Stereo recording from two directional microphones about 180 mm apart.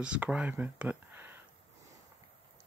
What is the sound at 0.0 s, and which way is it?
Speech, 5° right (ahead or behind).